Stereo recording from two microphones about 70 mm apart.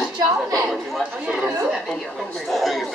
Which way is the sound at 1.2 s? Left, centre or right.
Centre.